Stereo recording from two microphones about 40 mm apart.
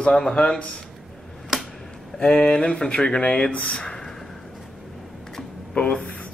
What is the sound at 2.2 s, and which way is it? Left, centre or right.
Speech, left.